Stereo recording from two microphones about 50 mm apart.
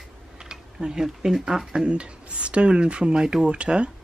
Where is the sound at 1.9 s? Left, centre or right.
Right.